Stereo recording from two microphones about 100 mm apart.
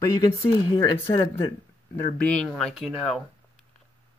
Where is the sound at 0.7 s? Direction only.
40° left (ahead or behind).